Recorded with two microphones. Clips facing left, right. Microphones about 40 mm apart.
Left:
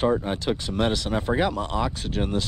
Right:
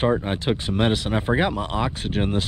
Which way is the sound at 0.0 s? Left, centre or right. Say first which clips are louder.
Right 1 dB; right.